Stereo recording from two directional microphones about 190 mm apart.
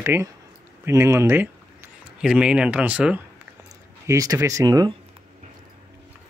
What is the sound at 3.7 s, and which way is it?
Speech, 20° right (ahead or behind).